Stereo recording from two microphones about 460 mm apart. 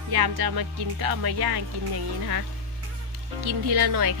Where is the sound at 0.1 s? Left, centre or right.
Right.